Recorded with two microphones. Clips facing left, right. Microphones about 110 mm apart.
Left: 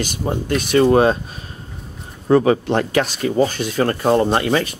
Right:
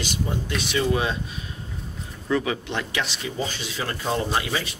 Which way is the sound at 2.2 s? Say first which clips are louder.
Left 11 dB; 45° left (ahead or behind).